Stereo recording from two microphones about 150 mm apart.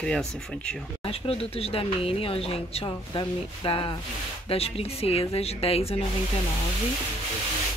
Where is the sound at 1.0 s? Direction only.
40° left (ahead or behind).